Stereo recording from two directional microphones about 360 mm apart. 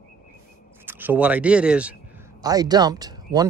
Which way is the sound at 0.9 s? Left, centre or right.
Centre.